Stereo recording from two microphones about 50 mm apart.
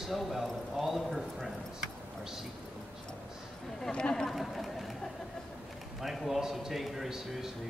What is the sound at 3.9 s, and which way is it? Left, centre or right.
Speech, centre.